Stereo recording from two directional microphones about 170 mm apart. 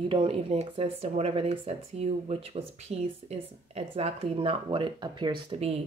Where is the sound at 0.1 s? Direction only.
35° right (ahead or behind).